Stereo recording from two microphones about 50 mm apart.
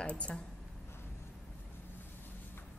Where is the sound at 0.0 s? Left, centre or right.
Left.